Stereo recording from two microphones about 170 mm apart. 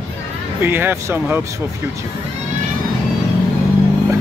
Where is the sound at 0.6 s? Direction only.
10° right (ahead or behind).